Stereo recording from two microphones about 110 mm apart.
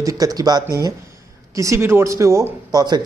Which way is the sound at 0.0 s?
35° right (ahead or behind).